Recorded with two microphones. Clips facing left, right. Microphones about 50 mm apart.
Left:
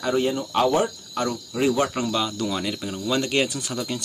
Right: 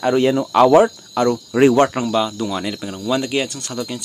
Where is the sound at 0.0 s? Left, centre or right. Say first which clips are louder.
Right 7 dB; right.